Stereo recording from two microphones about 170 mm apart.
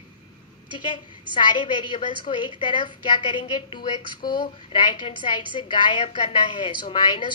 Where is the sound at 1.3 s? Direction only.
30° left (ahead or behind).